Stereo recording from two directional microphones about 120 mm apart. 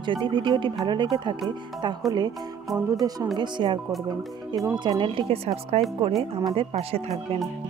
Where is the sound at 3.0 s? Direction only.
35° right (ahead or behind).